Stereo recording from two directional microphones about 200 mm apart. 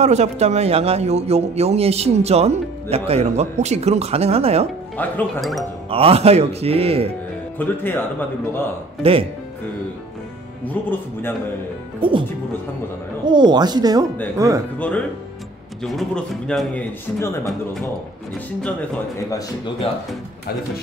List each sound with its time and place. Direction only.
0.0 s a man's voice: 35° right (ahead or behind)
4.9 s a man's voice: 10° left (ahead or behind)
5.9 s speech: 30° right (ahead or behind)
7.5 s speech: 10° left (ahead or behind)
9.0 s speech: 30° right (ahead or behind)
10.6 s speech: 10° left (ahead or behind)
12.0 s speech: 25° right (ahead or behind)
14.8 s a man's voice: 5° left (ahead or behind)
18.6 s speech: 5° left (ahead or behind)
19.3 s speech: 25° left (ahead or behind)